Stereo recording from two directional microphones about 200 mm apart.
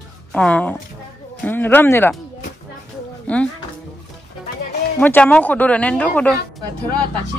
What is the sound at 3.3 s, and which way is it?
Speech, 5° left (ahead or behind).